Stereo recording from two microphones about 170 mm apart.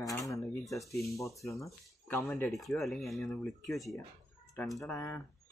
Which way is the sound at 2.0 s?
15° left (ahead or behind).